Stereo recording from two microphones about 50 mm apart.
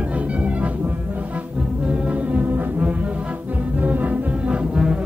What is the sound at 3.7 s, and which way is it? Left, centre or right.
Music, right.